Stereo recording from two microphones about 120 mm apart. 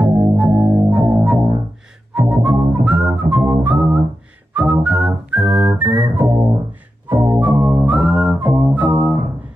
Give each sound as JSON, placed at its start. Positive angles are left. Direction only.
{"t": 0.0, "sound": "music", "side_deg": -5}
{"t": 2.1, "sound": "whistling", "side_deg": -5}
{"t": 5.8, "sound": "music", "side_deg": -15}